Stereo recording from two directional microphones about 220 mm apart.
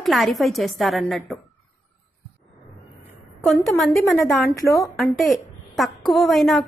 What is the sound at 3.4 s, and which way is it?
A woman's voice, centre (ahead or behind).